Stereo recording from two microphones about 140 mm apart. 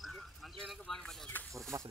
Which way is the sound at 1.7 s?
25° right (ahead or behind).